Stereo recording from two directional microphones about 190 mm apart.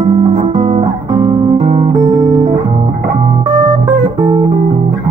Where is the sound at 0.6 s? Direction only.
35° right (ahead or behind).